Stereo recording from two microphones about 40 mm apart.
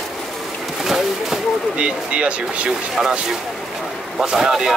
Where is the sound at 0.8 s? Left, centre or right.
Centre.